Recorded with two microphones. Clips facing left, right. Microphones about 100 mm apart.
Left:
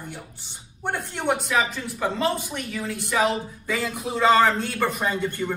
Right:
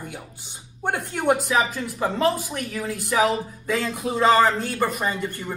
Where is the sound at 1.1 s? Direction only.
10° right (ahead or behind).